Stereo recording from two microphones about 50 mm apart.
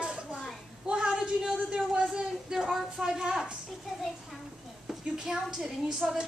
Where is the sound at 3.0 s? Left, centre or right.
Centre.